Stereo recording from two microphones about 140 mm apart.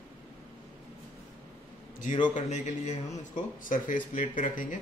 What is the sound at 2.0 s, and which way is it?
Speech, 65° left (ahead or behind).